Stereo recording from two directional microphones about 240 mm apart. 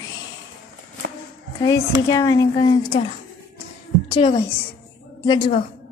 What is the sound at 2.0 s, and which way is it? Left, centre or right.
A woman's voice, centre.